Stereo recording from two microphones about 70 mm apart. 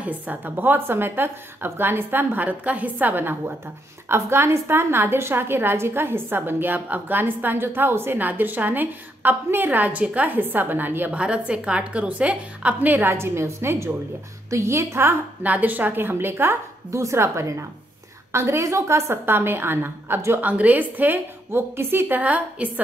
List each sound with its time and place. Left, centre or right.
0.0 s a woman's voice: right
11.1 s a woman's voice: centre
13.1 s a woman's voice: right
15.4 s a woman's voice: right
20.3 s a woman's voice: right